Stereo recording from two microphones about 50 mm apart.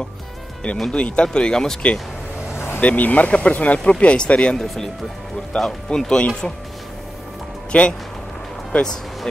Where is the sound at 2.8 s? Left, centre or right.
Left.